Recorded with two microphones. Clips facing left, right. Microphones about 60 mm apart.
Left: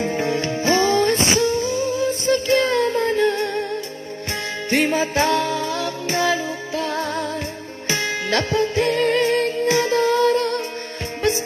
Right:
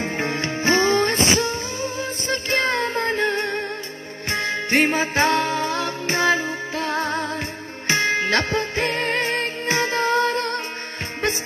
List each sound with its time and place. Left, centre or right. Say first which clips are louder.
0.0 s music: left 3 dB; right